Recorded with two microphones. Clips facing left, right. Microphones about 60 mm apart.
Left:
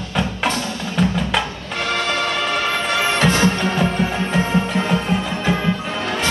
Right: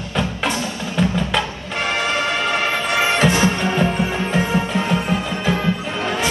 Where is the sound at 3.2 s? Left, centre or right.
Right.